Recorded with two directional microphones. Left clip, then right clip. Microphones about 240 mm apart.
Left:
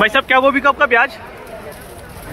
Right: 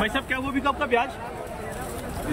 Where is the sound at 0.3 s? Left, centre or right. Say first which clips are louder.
Left 14 dB; left.